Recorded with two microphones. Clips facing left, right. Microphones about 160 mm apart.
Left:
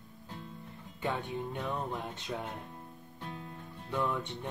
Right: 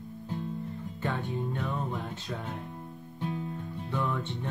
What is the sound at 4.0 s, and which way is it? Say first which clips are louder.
Music: even; 15° left (ahead or behind).